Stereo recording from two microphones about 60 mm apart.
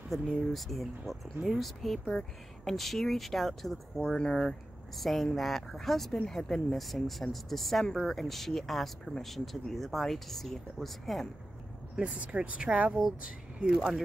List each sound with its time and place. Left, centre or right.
0.1 s speech: centre
12.0 s speech: right
13.7 s speech: centre